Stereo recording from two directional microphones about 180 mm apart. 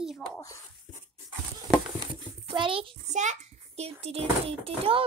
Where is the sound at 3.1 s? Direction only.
40° right (ahead or behind).